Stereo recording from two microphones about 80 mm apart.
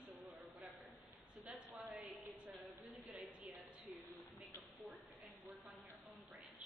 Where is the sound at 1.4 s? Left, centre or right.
Centre.